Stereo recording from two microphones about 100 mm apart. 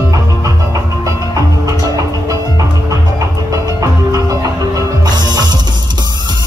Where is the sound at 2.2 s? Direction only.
35° right (ahead or behind).